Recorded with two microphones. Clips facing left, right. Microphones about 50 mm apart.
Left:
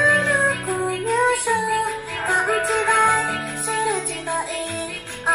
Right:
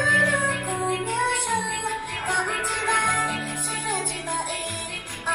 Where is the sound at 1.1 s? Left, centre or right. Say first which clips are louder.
Left 5 dB; left.